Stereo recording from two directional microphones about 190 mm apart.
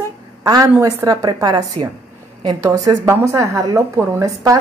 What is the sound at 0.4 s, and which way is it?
A woman's voice, 20° right (ahead or behind).